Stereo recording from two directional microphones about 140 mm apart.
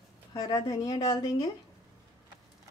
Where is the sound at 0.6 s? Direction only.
25° left (ahead or behind).